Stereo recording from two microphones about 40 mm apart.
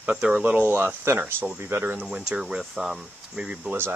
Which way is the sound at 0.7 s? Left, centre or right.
Right.